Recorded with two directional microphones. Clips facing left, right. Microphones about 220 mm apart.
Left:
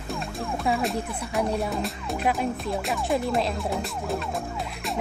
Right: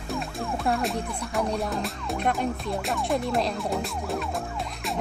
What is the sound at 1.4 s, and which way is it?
Speech, 5° left (ahead or behind).